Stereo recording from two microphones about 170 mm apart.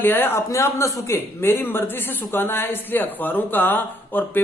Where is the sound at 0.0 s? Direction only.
10° left (ahead or behind).